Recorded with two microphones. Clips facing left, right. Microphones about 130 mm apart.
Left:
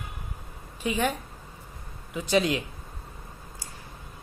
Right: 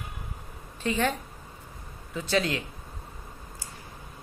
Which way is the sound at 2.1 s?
15° left (ahead or behind).